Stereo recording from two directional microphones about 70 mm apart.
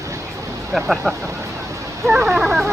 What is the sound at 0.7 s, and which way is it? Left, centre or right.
Speech, centre.